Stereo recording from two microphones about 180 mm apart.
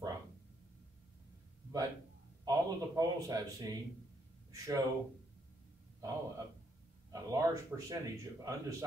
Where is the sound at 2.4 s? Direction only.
20° right (ahead or behind).